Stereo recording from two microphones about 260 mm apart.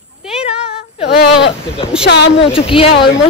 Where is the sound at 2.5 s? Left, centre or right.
Left.